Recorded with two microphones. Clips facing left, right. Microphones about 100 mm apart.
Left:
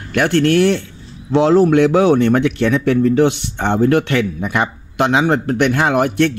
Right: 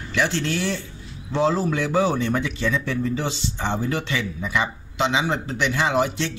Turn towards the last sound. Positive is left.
turn(degrees=55)  # may be behind; listen again after turning